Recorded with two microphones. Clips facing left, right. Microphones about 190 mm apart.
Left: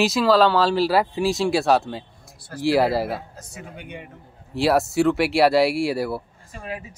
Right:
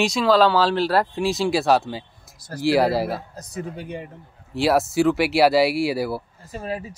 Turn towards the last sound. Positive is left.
turn(degrees=-35)  # may be behind; listen again after turning